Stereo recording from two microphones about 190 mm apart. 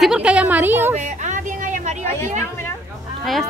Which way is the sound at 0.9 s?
40° right (ahead or behind).